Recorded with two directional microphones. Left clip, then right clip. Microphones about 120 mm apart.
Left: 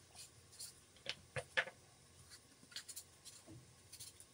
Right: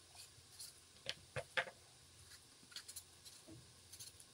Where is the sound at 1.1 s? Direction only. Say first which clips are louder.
Left 1 dB; 15° right (ahead or behind).